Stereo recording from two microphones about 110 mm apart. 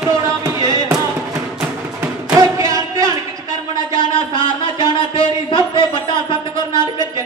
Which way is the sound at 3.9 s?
45° left (ahead or behind).